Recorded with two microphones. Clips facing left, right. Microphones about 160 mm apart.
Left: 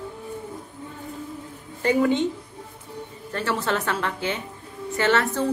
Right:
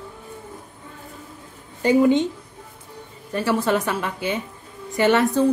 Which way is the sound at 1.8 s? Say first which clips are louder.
Right 4 dB; 20° right (ahead or behind).